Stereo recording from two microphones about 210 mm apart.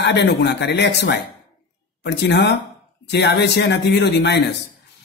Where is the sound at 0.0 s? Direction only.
55° left (ahead or behind).